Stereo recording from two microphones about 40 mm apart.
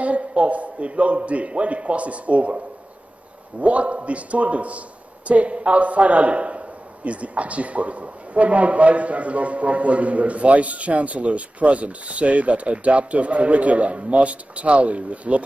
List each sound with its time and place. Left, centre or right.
0.0 s a man's voice: right
3.6 s a man's voice: right